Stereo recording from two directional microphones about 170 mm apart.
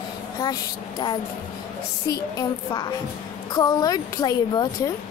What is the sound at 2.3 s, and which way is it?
A woman's voice, 25° left (ahead or behind).